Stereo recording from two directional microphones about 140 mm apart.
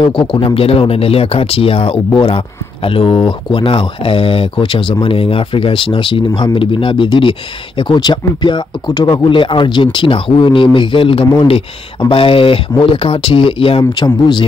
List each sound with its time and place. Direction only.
0.0 s speech: 40° left (ahead or behind)